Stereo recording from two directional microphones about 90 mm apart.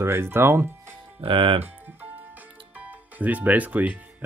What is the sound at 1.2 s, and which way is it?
Speech, 70° right (ahead or behind).